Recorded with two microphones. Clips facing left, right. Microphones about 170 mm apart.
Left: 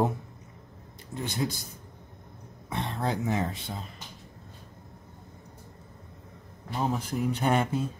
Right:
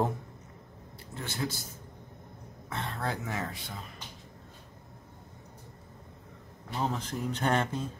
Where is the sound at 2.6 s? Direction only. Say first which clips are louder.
Left 4 dB; 20° left (ahead or behind).